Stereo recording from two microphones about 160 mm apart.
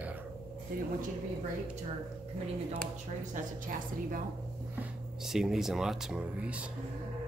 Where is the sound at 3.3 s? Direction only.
55° right (ahead or behind).